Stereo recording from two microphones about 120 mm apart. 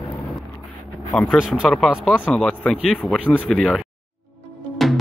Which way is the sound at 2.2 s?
10° left (ahead or behind).